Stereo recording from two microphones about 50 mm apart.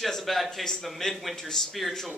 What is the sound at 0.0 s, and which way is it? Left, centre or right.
A man's voice, centre.